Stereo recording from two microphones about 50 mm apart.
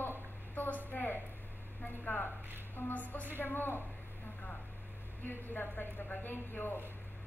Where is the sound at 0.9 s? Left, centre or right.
Left.